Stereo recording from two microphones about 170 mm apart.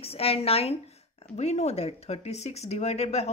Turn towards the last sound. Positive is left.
turn(degrees=40)  # may be behind; listen again after turning